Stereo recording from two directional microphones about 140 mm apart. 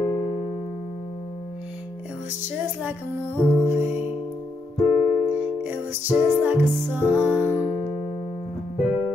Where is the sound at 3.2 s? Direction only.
15° left (ahead or behind).